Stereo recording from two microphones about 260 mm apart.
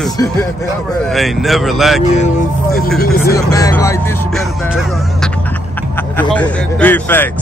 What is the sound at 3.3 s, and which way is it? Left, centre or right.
Speech, centre.